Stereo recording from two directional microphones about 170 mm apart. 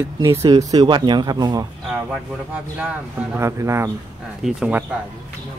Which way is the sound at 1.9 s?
5° right (ahead or behind).